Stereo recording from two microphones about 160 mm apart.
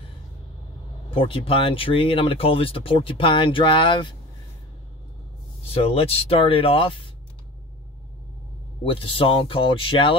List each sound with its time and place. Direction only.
1.1 s speech: 35° left (ahead or behind)
5.7 s speech: 35° left (ahead or behind)
8.8 s speech: 35° left (ahead or behind)